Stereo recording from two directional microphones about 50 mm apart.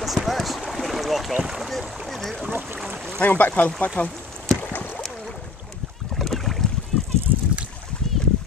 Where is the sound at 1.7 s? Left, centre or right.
Centre.